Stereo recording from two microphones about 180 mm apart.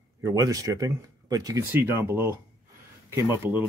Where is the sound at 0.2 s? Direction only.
20° right (ahead or behind).